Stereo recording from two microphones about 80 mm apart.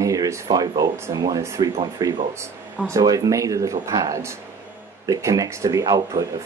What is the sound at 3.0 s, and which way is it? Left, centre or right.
Speech, right.